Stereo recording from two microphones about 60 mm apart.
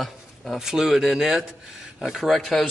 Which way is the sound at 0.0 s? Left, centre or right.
Centre.